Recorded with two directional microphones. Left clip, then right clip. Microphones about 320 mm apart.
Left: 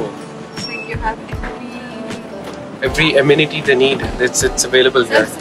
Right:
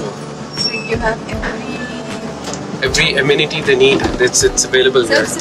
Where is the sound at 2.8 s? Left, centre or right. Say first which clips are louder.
Left 1 dB; centre.